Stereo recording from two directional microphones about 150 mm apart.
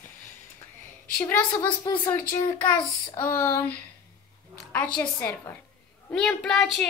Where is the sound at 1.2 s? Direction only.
10° left (ahead or behind).